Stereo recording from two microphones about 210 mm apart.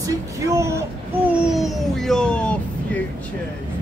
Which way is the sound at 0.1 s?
15° right (ahead or behind).